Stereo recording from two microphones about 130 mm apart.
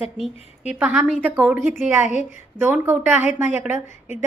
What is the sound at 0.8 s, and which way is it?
A woman's voice, 10° right (ahead or behind).